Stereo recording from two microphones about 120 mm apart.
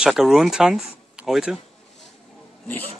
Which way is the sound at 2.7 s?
15° left (ahead or behind).